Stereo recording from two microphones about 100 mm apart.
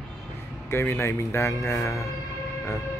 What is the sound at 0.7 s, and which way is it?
Speech, 25° left (ahead or behind).